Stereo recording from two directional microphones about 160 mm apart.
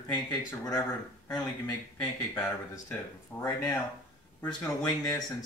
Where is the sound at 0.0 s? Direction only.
25° left (ahead or behind).